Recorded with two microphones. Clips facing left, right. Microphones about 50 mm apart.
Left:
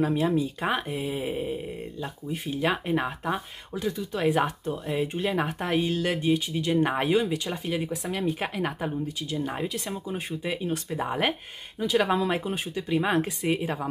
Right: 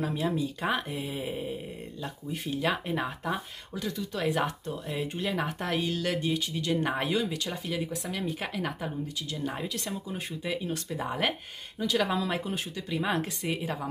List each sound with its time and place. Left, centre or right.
0.0 s speech: left